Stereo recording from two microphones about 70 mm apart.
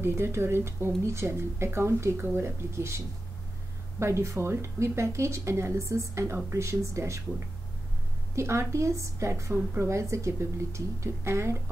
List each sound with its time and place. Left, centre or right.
0.0 s speech: right
4.0 s speech: right